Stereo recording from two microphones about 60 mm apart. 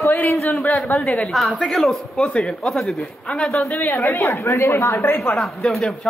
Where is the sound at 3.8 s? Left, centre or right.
Left.